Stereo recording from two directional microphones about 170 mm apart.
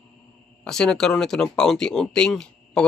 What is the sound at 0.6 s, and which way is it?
Speech, 5° left (ahead or behind).